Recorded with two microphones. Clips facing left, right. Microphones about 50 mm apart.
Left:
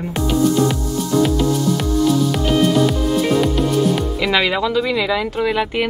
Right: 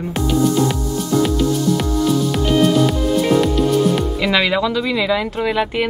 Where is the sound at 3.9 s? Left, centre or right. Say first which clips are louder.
Right 1 dB; centre.